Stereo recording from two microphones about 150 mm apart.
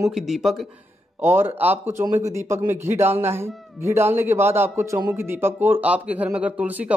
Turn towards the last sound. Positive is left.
turn(degrees=-10)  # may be behind; listen again after turning